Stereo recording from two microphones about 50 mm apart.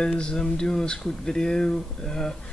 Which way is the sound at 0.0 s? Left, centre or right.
Centre.